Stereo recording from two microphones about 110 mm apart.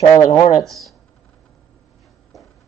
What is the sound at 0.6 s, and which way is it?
Speech, centre (ahead or behind).